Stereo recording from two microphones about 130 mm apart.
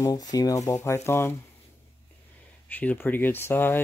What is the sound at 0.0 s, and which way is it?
Speech, 30° left (ahead or behind).